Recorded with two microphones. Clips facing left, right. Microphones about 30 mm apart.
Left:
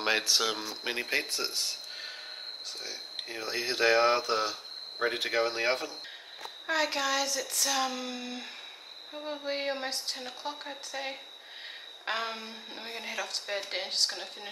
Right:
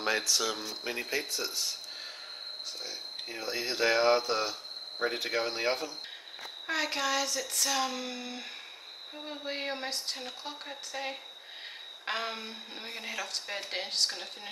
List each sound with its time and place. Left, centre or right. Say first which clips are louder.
0.0 s speech: left 2 dB; left
0.8 s speech: left 3 dB; left
1.3 s speech: left 1 dB; left
2.8 s speech: even; left
4.9 s speech: left 2 dB; left
5.6 s speech: left 2 dB; left
6.7 s a woman's voice: left 2 dB; centre